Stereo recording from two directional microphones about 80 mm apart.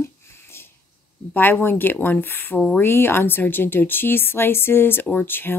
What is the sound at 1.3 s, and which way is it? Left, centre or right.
A woman's voice, left.